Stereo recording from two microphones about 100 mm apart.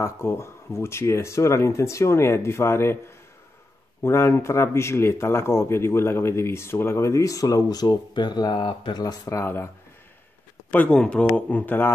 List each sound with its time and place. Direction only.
0.0 s a man's voice: 25° left (ahead or behind)
4.0 s a man's voice: 25° left (ahead or behind); by 9.0 s 50° left (ahead or behind)
9.0 s speech: 35° left (ahead or behind)
9.4 s a man's voice: 25° left (ahead or behind)
10.7 s a man's voice: 15° left (ahead or behind)